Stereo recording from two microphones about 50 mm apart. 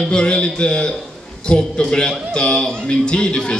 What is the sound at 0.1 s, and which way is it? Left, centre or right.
A man's voice, centre.